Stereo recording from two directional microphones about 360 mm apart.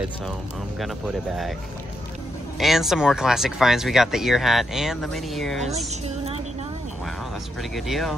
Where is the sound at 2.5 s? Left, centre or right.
Centre.